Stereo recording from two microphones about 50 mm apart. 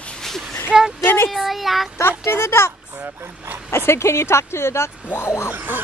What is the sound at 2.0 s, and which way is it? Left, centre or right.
Speech, left.